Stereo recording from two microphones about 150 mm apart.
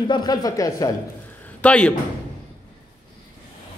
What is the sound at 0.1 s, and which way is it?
Speech, 25° left (ahead or behind).